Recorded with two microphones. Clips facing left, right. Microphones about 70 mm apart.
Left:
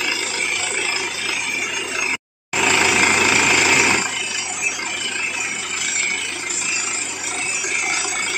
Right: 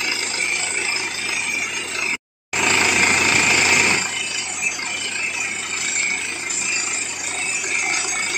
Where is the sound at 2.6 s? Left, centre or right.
Centre.